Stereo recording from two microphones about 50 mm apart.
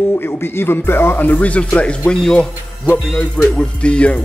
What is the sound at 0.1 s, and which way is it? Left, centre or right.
Speech, left.